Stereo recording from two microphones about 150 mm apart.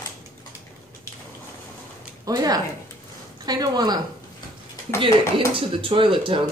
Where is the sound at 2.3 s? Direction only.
25° right (ahead or behind).